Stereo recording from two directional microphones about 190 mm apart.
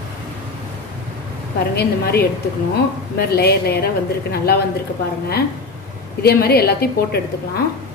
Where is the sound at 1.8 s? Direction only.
60° left (ahead or behind).